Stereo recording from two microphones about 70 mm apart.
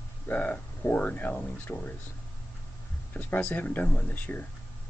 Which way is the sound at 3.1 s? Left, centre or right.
Left.